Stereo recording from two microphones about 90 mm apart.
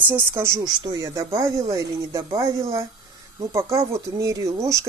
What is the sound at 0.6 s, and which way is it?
Speech, 55° right (ahead or behind).